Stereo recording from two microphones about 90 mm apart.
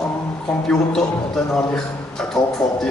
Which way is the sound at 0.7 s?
10° left (ahead or behind).